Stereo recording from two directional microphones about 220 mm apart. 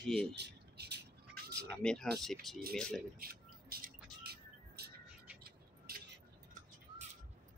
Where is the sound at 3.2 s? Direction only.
45° right (ahead or behind).